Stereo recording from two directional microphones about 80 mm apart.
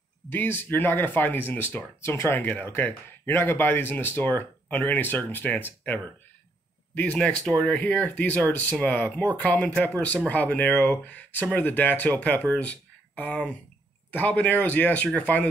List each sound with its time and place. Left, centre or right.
0.3 s speech: left